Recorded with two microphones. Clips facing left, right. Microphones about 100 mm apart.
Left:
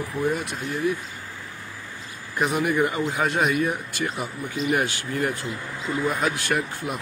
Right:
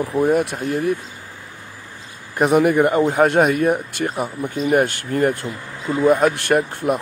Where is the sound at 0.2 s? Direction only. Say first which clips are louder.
Right 8 dB; 60° right (ahead or behind).